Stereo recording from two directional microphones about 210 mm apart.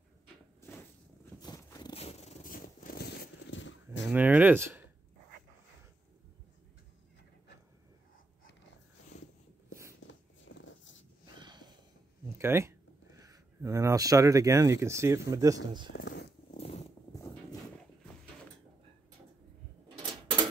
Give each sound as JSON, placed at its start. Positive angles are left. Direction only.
{"t": 0.6, "sound": "walk", "side_deg": 10}
{"t": 1.4, "sound": "zipper", "side_deg": 20}
{"t": 4.1, "sound": "speech", "side_deg": -10}
{"t": 10.0, "sound": "a sound", "side_deg": 65}
{"t": 11.3, "sound": "sniff", "side_deg": -20}
{"t": 12.4, "sound": "speech", "side_deg": -10}
{"t": 15.9, "sound": "purr", "side_deg": 50}
{"t": 16.5, "sound": "zipper", "side_deg": 30}